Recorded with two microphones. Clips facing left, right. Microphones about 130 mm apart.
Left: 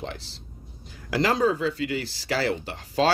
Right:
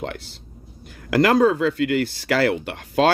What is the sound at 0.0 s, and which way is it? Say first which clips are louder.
Speech: right 5 dB; 60° right (ahead or behind).